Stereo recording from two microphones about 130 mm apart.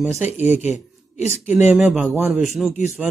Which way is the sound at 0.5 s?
60° left (ahead or behind).